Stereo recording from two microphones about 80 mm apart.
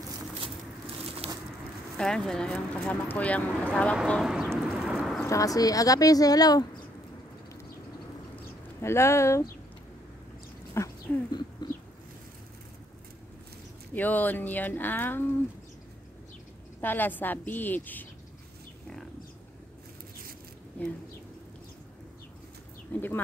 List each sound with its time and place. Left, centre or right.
2.0 s speech: centre
4.2 s speech: centre
4.5 s a sound: centre
4.8 s a sound: centre
5.2 s speech: left
8.8 s speech: left
10.8 s speech: left
11.6 s bird: left
13.9 s speech: left
16.8 s speech: left
20.8 s speech: centre
22.9 s speech: left